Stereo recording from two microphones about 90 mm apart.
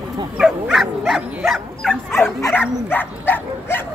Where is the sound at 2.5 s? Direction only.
20° left (ahead or behind).